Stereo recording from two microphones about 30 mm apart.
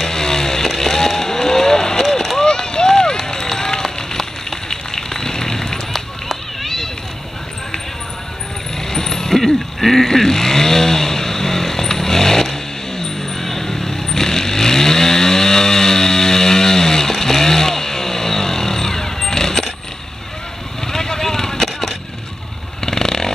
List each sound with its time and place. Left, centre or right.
0.0 s vehicle: centre
2.3 s a sound: left
3.5 s run: centre
5.9 s run: centre
8.7 s vehicle: centre
17.1 s chainsaw: centre
20.8 s vehicle: centre
22.8 s a sound: centre